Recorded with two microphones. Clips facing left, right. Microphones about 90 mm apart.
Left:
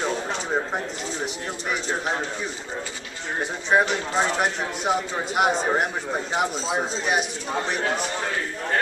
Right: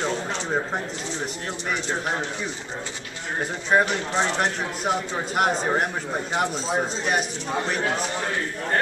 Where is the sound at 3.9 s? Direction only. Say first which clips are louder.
Left 1 dB; 10° left (ahead or behind).